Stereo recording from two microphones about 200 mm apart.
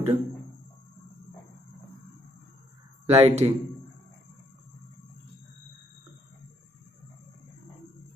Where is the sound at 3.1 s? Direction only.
30° right (ahead or behind).